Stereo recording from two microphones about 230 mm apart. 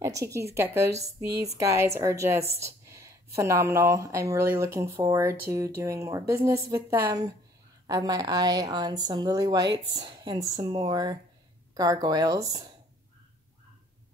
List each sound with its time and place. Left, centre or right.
0.0 s a woman's voice: centre
2.6 s a sound: centre
3.3 s a woman's voice: centre